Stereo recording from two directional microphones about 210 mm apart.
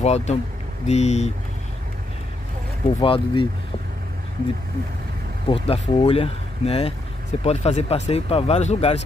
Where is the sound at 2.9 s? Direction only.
25° left (ahead or behind).